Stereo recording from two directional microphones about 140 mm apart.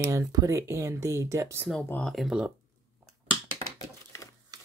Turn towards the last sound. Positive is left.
turn(degrees=-30)  # may be behind; listen again after turning